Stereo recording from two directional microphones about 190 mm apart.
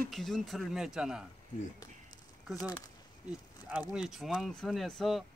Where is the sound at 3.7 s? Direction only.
5° right (ahead or behind).